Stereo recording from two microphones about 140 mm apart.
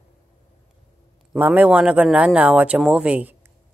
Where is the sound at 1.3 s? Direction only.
10° right (ahead or behind).